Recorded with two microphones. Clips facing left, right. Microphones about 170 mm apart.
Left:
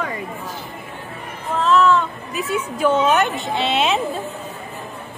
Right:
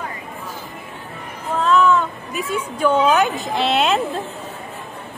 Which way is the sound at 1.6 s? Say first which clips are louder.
Even; centre (ahead or behind).